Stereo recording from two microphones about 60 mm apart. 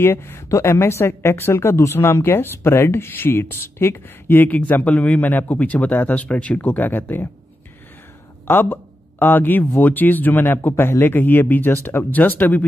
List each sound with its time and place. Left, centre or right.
0.0 s a woman's voice: left
8.5 s a woman's voice: left